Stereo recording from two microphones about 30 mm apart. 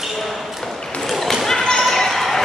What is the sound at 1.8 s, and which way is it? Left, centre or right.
Basketball bounce, centre.